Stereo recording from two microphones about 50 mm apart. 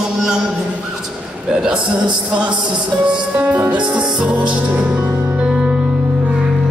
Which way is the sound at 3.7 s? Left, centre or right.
Centre.